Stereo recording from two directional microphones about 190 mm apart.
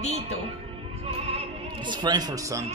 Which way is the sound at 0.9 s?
30° right (ahead or behind).